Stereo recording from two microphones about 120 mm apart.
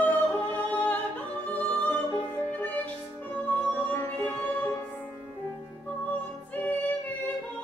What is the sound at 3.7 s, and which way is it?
Music, 15° left (ahead or behind).